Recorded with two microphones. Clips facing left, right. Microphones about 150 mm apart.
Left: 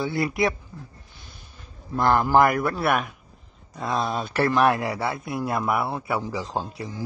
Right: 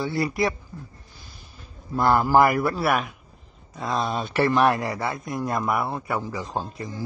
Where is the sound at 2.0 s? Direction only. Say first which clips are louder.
Even; 5° right (ahead or behind).